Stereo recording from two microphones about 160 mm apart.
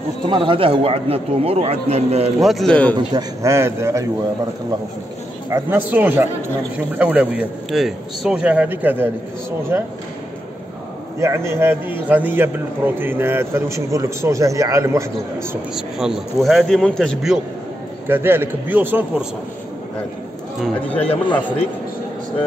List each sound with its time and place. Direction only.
0.2 s speech: 30° right (ahead or behind)
2.4 s speech: centre (ahead or behind)
3.1 s a man's voice: 20° right (ahead or behind)
5.5 s a man's voice: 10° right (ahead or behind)
11.1 s a man's voice: 15° right (ahead or behind)
15.3 s speech: 5° right (ahead or behind)
18.0 s a man's voice: 15° right (ahead or behind)
20.6 s speech: 10° left (ahead or behind)